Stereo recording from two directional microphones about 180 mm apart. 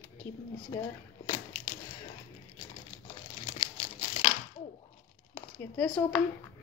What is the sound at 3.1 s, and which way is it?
Crumpling, 30° left (ahead or behind).